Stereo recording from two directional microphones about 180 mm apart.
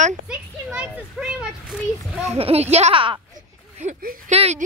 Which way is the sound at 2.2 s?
35° right (ahead or behind).